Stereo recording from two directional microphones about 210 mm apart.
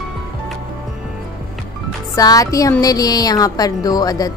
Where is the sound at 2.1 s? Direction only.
15° left (ahead or behind).